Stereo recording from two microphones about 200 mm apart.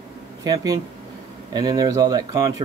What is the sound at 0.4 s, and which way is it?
Speech, 15° right (ahead or behind).